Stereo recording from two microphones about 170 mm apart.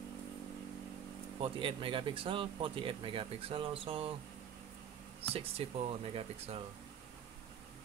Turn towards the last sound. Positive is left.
turn(degrees=-40)  # may be behind; listen again after turning